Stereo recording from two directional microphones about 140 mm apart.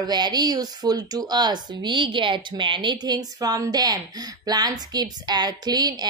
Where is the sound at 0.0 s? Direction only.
30° right (ahead or behind).